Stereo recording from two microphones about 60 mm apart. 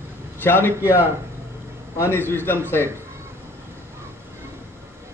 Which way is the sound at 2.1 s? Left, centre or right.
Left.